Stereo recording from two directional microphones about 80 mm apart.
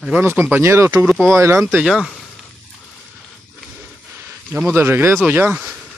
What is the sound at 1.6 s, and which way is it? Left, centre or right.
Speech, centre.